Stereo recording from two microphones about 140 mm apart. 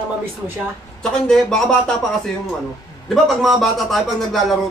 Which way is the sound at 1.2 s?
5° left (ahead or behind).